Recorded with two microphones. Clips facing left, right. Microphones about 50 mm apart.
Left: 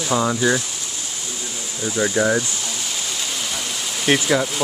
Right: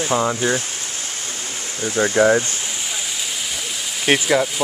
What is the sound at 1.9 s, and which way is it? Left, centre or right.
Speech, right.